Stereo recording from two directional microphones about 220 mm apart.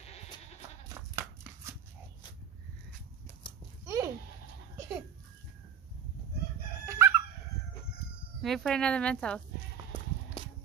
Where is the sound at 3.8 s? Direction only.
15° right (ahead or behind).